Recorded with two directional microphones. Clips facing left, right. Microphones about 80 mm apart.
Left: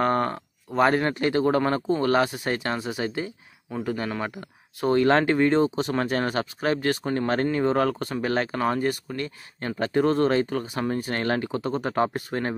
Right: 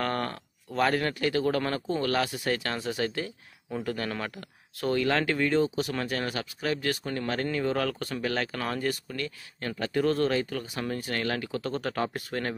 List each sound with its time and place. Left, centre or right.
0.0 s speech: left
4.9 s speech: left